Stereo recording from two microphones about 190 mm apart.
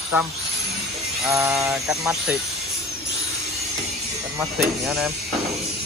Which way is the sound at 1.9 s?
5° right (ahead or behind).